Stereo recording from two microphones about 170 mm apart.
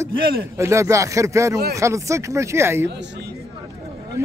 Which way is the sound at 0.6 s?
15° right (ahead or behind).